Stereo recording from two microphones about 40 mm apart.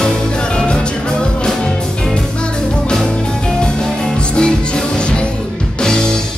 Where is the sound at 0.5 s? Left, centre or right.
Left.